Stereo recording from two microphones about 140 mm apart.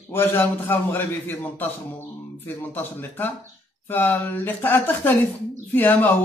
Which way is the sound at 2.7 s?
15° left (ahead or behind).